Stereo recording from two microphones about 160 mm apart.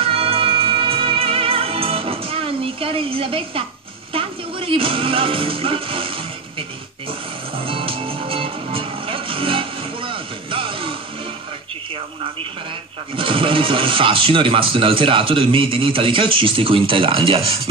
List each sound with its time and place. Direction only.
0.0 s music: 35° right (ahead or behind)
13.1 s speech: 35° right (ahead or behind)